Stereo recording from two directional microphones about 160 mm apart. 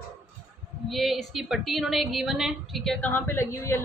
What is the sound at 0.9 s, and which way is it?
Speech, centre (ahead or behind).